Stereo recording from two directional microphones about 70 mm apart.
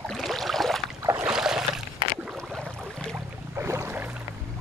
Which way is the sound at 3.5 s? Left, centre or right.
Right.